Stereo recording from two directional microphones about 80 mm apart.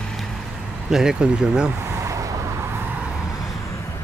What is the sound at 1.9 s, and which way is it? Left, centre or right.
Vehicle, right.